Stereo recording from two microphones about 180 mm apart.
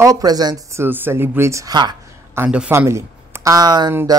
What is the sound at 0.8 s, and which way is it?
Speech, 10° right (ahead or behind).